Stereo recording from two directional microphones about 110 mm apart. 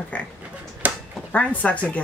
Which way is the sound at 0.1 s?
15° left (ahead or behind).